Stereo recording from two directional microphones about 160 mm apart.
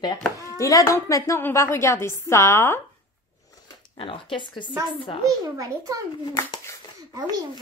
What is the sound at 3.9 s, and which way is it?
Speech, 35° left (ahead or behind).